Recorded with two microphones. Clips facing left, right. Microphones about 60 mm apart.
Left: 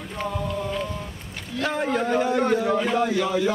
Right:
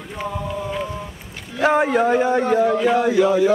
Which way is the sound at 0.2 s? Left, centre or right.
Centre.